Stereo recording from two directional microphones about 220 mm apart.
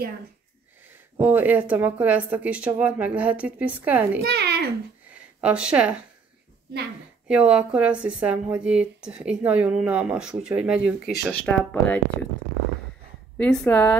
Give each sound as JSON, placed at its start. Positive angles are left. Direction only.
{"t": 0.8, "sound": "speech", "side_deg": -10}
{"t": 4.2, "sound": "a child's voice", "side_deg": -45}
{"t": 5.1, "sound": "speech", "side_deg": -5}
{"t": 7.2, "sound": "a woman's voice", "side_deg": -5}
{"t": 13.4, "sound": "speech", "side_deg": 5}